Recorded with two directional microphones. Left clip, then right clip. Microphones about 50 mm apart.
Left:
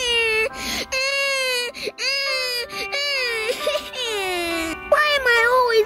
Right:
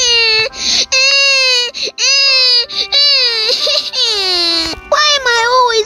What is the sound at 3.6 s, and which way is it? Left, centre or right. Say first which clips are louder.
Baby cry: right 9 dB; centre.